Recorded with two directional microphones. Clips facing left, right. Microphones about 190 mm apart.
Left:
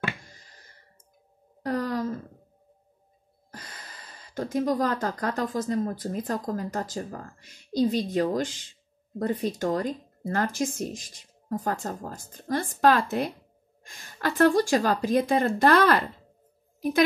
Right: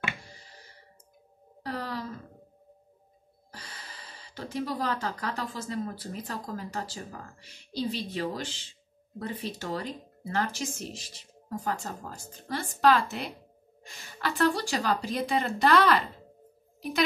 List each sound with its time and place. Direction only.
1.6 s wail: 45° left (ahead or behind)
3.5 s speech: 50° left (ahead or behind)